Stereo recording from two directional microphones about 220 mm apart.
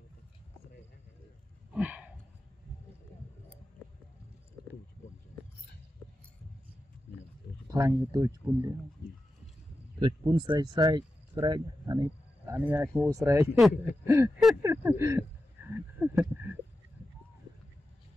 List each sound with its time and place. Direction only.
1.7 s sigh: 5° right (ahead or behind)
7.7 s speech: 15° right (ahead or behind)
9.9 s speech: 20° right (ahead or behind)
14.6 s a sound: 10° right (ahead or behind)